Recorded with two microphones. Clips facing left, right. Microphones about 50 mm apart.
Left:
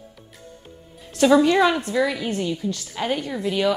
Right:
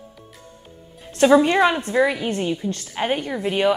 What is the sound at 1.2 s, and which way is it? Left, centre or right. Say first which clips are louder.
A woman's voice: right 1 dB; right.